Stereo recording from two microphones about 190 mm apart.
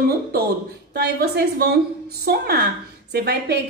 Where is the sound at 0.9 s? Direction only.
55° right (ahead or behind).